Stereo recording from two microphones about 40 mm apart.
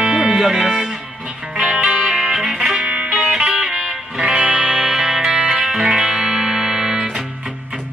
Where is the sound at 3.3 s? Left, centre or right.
Centre.